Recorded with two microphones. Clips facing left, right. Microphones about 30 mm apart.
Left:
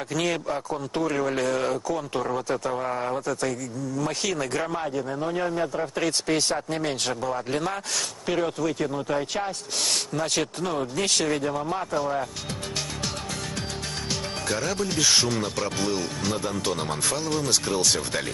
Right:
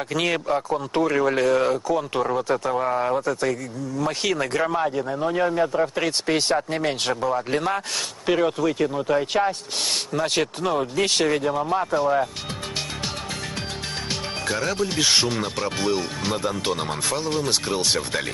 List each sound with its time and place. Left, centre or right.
0.1 s speech: right
14.6 s speech: right